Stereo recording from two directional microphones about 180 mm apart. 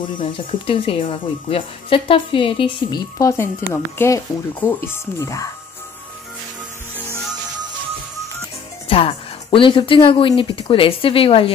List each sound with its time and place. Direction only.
0.0 s speech: 30° left (ahead or behind)
3.2 s speech: 20° left (ahead or behind)
8.8 s speech: 30° left (ahead or behind)